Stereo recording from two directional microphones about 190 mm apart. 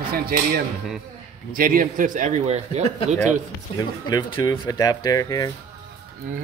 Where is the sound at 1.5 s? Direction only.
50° right (ahead or behind).